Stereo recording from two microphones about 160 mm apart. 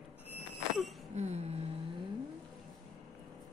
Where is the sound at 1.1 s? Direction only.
45° right (ahead or behind).